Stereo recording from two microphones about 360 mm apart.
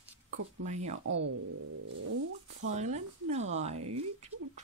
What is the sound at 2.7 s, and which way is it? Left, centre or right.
Speech, centre.